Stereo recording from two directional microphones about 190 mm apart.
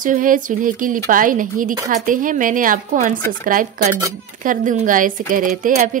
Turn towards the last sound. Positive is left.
turn(degrees=-45)  # may be behind; listen again after turning